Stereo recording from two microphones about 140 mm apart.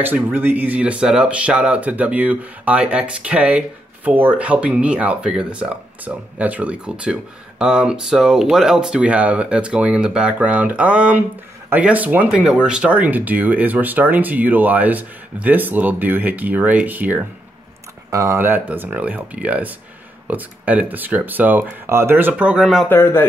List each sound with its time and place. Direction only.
0.0 s speech: 15° right (ahead or behind)
22.8 s a man's voice: 20° left (ahead or behind)